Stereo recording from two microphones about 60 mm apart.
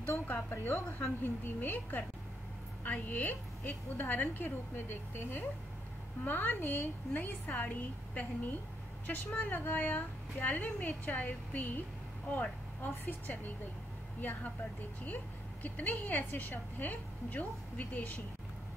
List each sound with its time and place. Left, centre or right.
0.0 s a woman's voice: left